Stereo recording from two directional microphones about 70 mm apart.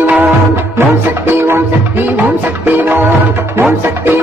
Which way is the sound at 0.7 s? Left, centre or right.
Right.